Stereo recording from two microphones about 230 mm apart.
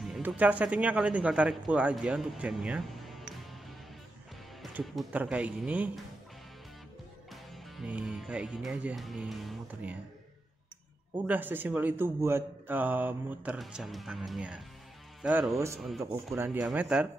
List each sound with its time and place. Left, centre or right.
0.0 s speech: centre
4.7 s speech: centre
7.7 s speech: centre
11.2 s speech: centre